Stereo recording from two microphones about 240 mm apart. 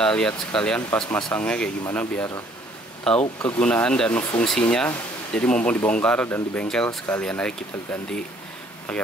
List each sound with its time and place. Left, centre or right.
0.0 s speech: centre